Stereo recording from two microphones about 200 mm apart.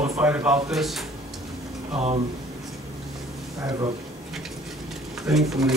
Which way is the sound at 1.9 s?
35° right (ahead or behind).